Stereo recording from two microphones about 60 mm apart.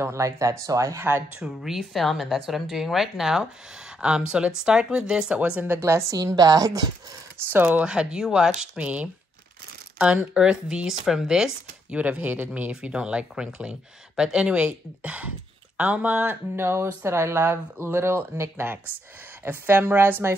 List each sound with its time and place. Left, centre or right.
0.0 s speech: right
0.9 s speech: right
1.4 s speech: centre; by 5.8 s right
5.8 s speech: right
6.1 s a woman's voice: right
7.6 s speech: centre
8.7 s speech: right
11.9 s speech: right
16.5 s a woman's voice: right